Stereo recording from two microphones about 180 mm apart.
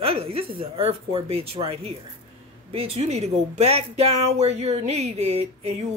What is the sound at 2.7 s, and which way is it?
Speech, 35° right (ahead or behind).